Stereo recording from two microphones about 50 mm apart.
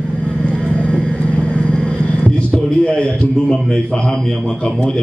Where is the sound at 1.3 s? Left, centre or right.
Centre.